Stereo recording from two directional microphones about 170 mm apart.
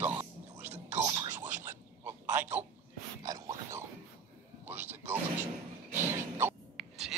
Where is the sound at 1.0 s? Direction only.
25° right (ahead or behind).